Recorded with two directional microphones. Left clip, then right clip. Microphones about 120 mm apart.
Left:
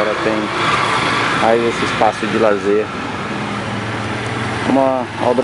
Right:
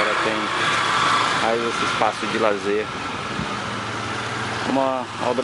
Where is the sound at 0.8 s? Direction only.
20° left (ahead or behind).